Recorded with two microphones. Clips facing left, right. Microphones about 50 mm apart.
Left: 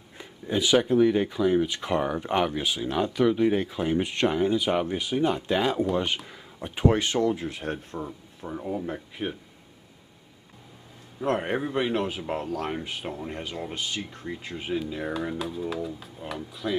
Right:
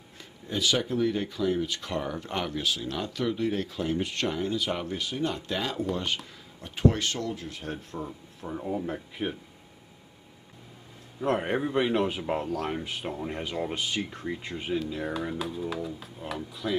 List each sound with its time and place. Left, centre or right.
0.2 s speech: centre
7.9 s speech: centre
11.1 s speech: centre